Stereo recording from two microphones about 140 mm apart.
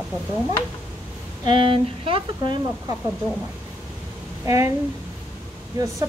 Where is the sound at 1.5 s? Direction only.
40° right (ahead or behind).